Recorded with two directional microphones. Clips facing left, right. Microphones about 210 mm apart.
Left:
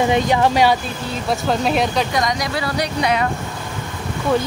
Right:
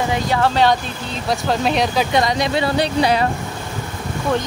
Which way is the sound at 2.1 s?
25° right (ahead or behind).